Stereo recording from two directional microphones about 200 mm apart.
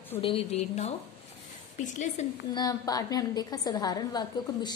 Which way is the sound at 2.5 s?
20° left (ahead or behind).